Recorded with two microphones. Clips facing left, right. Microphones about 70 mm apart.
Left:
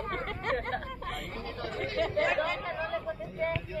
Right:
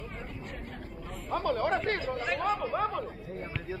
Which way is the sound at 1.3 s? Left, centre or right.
Right.